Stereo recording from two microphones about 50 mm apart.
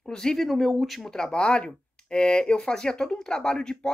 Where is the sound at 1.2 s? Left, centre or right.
Centre.